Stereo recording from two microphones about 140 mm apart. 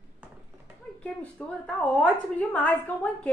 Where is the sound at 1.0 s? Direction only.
10° left (ahead or behind).